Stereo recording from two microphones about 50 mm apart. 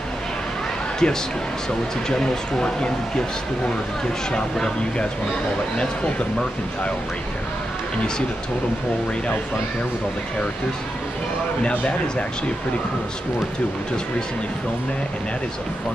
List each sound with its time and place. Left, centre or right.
1.0 s speech: centre
4.3 s speech: centre